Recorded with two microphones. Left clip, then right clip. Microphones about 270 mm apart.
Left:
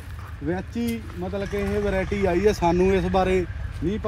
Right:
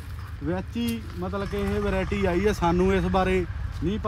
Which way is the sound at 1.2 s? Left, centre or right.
Right.